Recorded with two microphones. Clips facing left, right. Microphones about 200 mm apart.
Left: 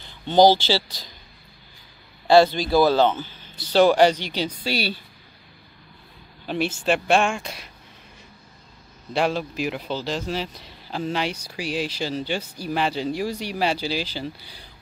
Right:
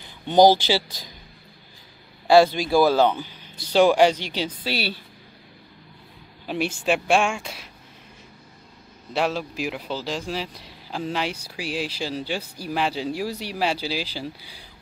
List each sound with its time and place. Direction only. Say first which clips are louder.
0.0 s speech: even; 15° right (ahead or behind)
2.2 s speech: even; 10° right (ahead or behind)
6.4 s a man's voice: left 1 dB; 10° right (ahead or behind)
9.1 s a man's voice: left 2 dB; centre (ahead or behind)